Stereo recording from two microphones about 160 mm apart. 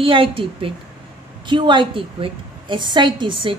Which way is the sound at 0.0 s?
35° right (ahead or behind).